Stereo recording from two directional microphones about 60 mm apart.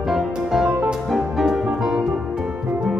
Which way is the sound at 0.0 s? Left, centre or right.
Centre.